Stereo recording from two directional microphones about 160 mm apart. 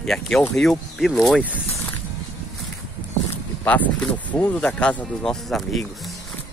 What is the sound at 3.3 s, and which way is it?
Speech, 10° left (ahead or behind).